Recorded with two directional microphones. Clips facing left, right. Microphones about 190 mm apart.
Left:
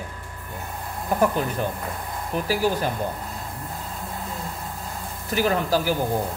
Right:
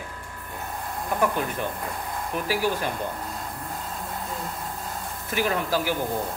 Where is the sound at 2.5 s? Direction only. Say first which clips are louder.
Left 3 dB; 40° left (ahead or behind).